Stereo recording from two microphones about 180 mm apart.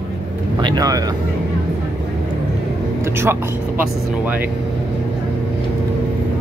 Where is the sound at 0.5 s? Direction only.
25° right (ahead or behind).